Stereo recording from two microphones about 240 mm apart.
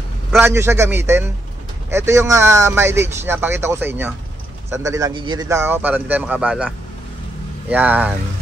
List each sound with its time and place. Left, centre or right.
0.4 s speech: centre
7.7 s speech: centre